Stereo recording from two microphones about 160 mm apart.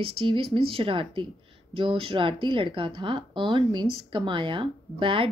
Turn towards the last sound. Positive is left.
turn(degrees=-35)  # may be behind; listen again after turning